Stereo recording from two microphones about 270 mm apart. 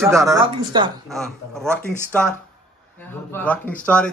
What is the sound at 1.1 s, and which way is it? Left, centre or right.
Speech, centre.